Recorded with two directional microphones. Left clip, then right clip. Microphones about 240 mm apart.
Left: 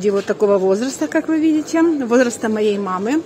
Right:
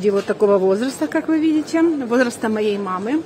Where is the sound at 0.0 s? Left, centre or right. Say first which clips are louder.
Even; centre.